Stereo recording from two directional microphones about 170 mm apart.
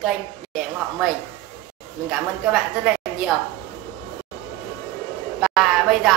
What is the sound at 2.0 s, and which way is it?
A woman's voice, centre (ahead or behind).